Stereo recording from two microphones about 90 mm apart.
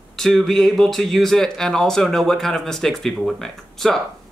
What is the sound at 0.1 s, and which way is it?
Speech, 5° left (ahead or behind).